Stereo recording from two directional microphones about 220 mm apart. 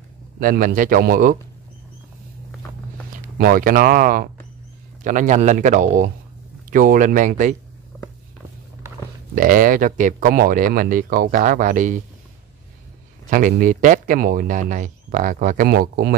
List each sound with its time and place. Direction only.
0.4 s speech: 40° right (ahead or behind)
3.3 s speech: 40° right (ahead or behind)
9.3 s speech: 40° right (ahead or behind)
13.3 s speech: 40° right (ahead or behind)